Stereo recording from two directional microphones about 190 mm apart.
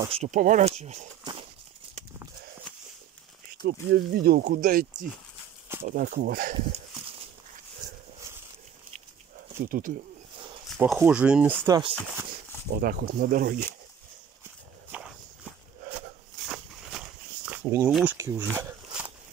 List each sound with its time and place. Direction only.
0.1 s speech: 40° right (ahead or behind)
3.6 s speech: 55° right (ahead or behind)
5.9 s speech: 45° right (ahead or behind)
9.6 s speech: 45° right (ahead or behind)
10.8 s speech: 10° right (ahead or behind)
11.6 s speech: 20° right (ahead or behind)
12.7 s speech: 50° right (ahead or behind)
14.9 s walk: 5° right (ahead or behind)
16.4 s a sound: centre (ahead or behind)
18.1 s speech: 15° right (ahead or behind)